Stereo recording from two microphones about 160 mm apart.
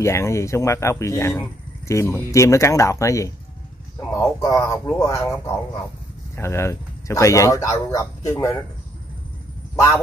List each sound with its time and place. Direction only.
0.0 s speech: 15° left (ahead or behind)
6.3 s speech: 15° left (ahead or behind)